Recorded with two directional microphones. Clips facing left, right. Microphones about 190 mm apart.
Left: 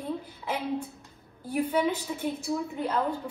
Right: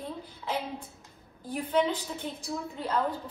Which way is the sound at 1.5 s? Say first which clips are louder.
Left 1 dB; 10° left (ahead or behind).